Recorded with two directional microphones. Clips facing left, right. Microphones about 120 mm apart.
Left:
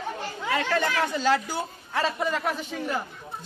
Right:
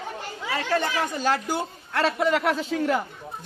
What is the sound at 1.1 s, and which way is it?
A man's voice, 50° right (ahead or behind).